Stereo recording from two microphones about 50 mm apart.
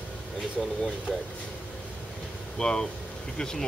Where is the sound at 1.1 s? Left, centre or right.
Centre.